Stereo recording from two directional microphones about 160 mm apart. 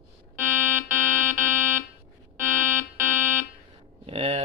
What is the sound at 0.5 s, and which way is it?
Fire alarm, 15° right (ahead or behind).